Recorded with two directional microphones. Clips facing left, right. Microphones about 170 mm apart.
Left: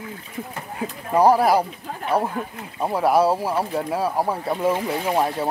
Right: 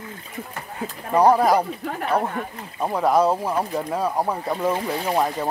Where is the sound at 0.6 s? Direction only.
10° left (ahead or behind).